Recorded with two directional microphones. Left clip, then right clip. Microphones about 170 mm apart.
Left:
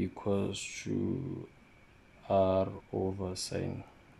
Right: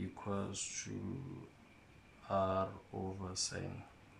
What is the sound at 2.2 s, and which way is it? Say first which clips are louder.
Speech: left 8 dB; 25° left (ahead or behind).